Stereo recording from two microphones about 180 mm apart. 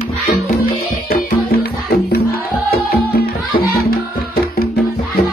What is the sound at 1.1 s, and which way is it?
Music, 55° left (ahead or behind).